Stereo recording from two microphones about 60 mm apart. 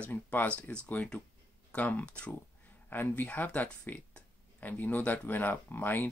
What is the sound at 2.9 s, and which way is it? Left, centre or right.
Speech, left.